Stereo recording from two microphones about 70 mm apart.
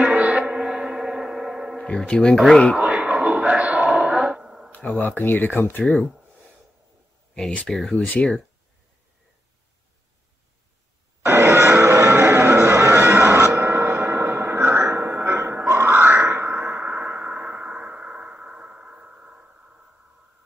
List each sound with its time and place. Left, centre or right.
0.1 s gong: right
0.6 s gong: centre
2.0 s speech: centre
2.8 s a sound: centre
4.7 s speech: left
7.3 s speech: centre
7.9 s speech: centre
11.2 s a sound: right
15.2 s music: right
15.7 s grunt: right
16.2 s a sound: right
16.7 s a sound: right